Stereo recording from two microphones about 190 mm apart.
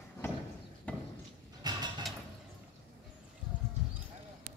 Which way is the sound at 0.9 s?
10° left (ahead or behind).